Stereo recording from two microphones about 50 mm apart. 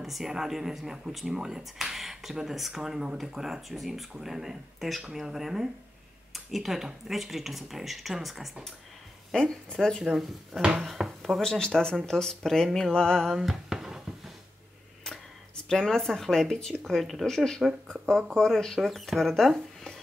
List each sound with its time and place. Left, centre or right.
0.0 s speech: centre
9.3 s speech: centre
10.0 s speech: centre
11.4 s speech: centre
13.3 s a sound: centre
15.0 s speech: centre